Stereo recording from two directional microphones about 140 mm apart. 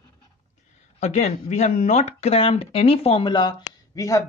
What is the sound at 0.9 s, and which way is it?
A man's voice, 55° left (ahead or behind).